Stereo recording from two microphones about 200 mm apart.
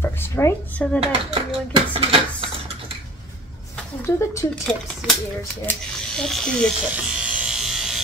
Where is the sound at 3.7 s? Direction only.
10° left (ahead or behind).